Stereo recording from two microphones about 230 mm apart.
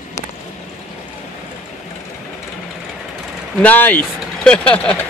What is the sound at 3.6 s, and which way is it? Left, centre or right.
Speech, centre.